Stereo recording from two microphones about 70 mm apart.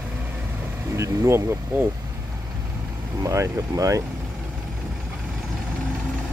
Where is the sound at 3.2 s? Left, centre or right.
Right.